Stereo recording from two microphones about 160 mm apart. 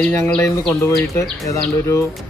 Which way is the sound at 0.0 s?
10° left (ahead or behind).